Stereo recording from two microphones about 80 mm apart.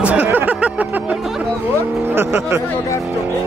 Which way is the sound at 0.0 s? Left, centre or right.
Centre.